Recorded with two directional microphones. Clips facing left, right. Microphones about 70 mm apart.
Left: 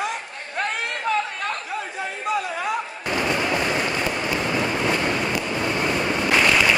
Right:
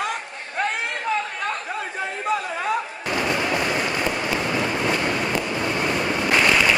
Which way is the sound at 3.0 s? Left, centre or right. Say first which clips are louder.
Left 1 dB; centre.